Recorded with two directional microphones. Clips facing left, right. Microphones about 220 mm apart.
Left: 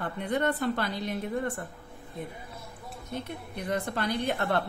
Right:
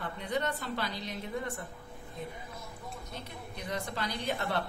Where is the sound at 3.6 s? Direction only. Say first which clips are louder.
Left 6 dB; 55° left (ahead or behind).